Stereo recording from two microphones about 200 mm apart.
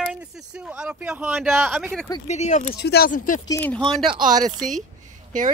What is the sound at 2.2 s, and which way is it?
Speech, 35° left (ahead or behind).